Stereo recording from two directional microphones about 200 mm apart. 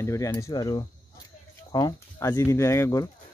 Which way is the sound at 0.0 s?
15° left (ahead or behind).